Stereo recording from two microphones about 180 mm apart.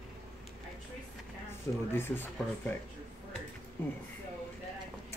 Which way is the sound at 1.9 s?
15° left (ahead or behind).